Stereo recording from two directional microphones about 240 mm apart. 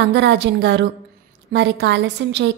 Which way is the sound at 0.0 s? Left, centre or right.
Right.